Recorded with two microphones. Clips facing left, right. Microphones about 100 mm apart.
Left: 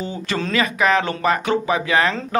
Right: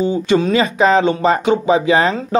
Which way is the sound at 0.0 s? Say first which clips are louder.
Right 10 dB; 20° right (ahead or behind).